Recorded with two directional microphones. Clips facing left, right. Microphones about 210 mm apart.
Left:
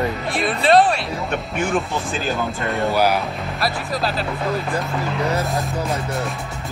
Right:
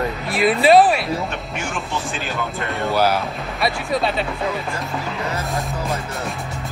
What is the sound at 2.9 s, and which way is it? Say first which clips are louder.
Speech: right 1 dB; 15° left (ahead or behind).